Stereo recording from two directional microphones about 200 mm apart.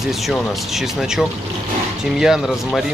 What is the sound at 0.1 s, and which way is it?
Speech, centre (ahead or behind).